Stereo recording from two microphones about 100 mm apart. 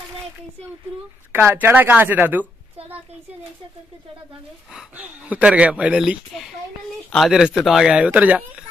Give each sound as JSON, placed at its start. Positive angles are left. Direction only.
{"t": 1.3, "sound": "speech", "side_deg": -20}
{"t": 4.9, "sound": "speech", "side_deg": -15}